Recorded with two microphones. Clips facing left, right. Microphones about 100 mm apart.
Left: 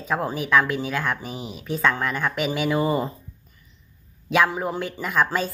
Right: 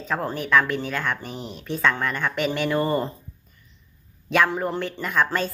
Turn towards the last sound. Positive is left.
turn(degrees=5)  # may be behind; listen again after turning